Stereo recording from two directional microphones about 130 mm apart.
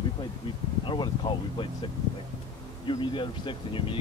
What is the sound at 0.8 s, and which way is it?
Speech, 35° left (ahead or behind).